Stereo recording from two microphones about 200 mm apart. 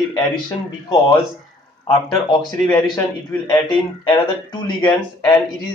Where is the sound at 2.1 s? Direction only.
20° left (ahead or behind).